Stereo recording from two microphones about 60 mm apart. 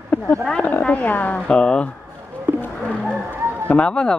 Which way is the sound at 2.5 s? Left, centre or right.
Right.